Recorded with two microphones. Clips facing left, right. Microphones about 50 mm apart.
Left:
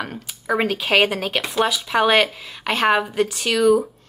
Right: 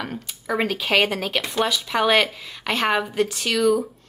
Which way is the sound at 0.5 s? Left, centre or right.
Centre.